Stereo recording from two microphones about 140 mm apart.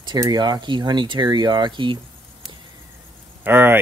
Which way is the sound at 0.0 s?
30° right (ahead or behind).